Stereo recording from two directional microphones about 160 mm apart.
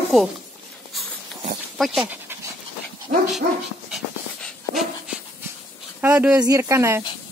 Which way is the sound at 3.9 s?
Centre (ahead or behind).